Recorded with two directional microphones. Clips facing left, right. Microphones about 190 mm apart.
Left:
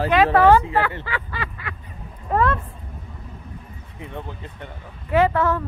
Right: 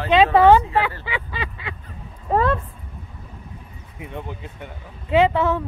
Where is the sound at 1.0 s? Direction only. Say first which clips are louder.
Right 1 dB; 20° right (ahead or behind).